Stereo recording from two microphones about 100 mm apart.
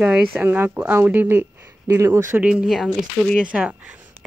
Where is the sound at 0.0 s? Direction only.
15° right (ahead or behind).